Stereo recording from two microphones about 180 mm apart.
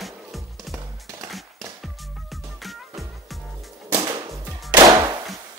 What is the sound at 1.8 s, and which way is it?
Music, centre (ahead or behind).